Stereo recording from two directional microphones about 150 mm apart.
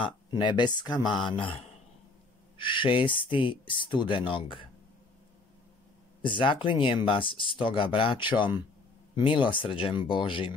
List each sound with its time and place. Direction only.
0.0 s speech: 30° left (ahead or behind)
6.2 s speech: 35° left (ahead or behind)